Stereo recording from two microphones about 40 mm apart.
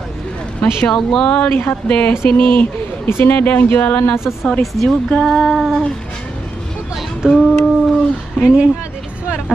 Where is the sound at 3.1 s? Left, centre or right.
Left.